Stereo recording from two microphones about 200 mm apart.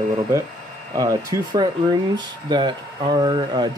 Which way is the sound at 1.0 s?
15° right (ahead or behind).